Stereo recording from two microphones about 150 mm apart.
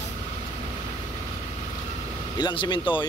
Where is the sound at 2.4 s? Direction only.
35° left (ahead or behind).